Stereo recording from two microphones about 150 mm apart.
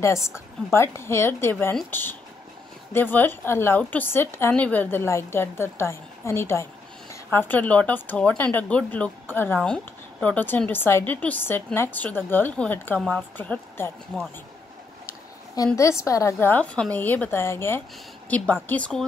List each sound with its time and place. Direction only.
0.7 s a woman's voice: 15° left (ahead or behind)
15.5 s a woman's voice: 20° left (ahead or behind); by 19.0 s 5° left (ahead or behind)